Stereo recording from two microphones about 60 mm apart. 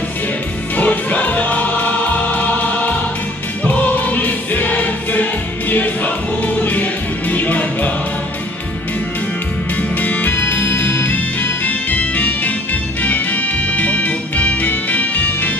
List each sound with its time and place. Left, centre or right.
0.7 s music: left
9.8 s music: left